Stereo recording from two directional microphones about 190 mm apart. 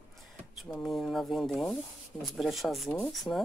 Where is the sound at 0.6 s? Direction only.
Centre (ahead or behind).